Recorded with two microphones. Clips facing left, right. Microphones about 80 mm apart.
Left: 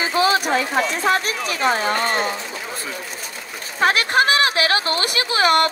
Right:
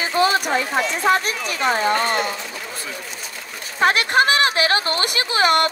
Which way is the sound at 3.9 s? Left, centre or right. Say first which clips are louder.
Left 1 dB; right.